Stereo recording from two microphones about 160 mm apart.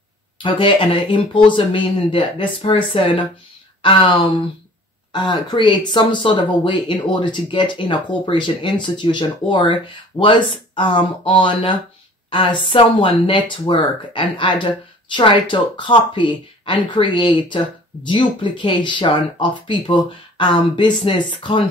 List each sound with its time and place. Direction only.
0.4 s speech: 30° left (ahead or behind)